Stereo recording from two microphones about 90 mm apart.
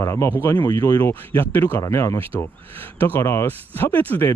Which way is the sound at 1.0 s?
20° left (ahead or behind).